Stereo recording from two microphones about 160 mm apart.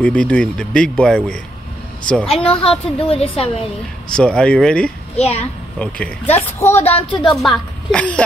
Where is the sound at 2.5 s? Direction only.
35° left (ahead or behind).